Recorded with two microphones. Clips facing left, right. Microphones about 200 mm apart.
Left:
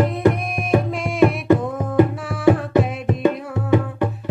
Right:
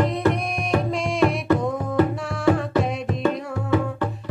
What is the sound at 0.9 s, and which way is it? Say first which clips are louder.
Music: left 3 dB; 5° left (ahead or behind).